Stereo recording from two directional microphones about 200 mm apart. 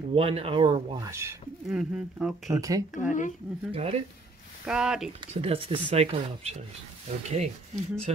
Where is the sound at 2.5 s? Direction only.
15° right (ahead or behind).